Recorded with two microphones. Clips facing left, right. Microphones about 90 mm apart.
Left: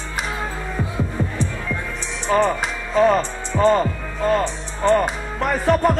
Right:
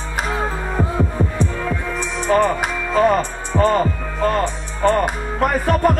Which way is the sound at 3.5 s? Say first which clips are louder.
Even; 30° right (ahead or behind).